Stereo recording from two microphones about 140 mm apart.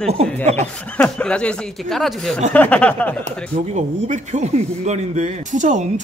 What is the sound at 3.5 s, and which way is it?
A man's voice, 55° right (ahead or behind).